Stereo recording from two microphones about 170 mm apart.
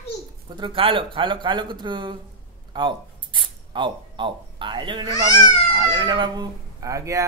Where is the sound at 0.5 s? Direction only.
30° right (ahead or behind).